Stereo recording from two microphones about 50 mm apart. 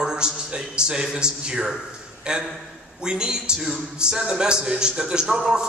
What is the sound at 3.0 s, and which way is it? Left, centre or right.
A man's voice, centre.